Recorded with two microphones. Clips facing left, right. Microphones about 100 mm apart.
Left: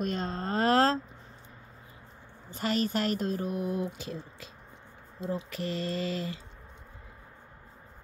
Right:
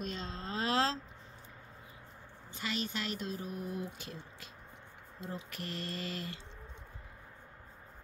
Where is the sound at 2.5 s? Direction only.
45° left (ahead or behind); by 4.0 s 90° left.